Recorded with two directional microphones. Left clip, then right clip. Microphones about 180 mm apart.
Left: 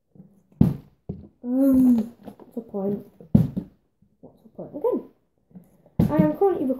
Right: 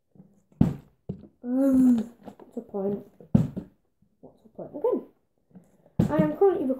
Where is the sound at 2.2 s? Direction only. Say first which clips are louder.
Left 2 dB; centre (ahead or behind).